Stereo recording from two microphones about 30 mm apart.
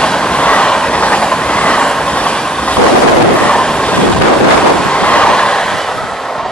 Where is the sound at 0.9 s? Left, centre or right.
Left.